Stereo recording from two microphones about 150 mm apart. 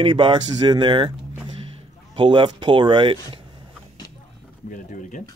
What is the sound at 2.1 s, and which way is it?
Speech, 35° right (ahead or behind).